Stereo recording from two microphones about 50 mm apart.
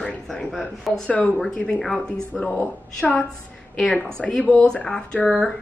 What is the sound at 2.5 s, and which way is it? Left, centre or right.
Speech, left.